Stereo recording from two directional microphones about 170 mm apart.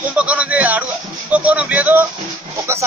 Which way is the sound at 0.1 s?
10° right (ahead or behind).